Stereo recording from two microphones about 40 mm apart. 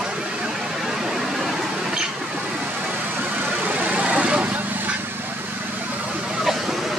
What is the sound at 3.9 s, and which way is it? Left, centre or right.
Vehicle, right.